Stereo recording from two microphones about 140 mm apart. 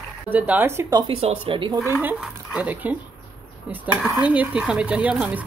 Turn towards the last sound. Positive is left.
turn(degrees=-10)  # may be behind; listen again after turning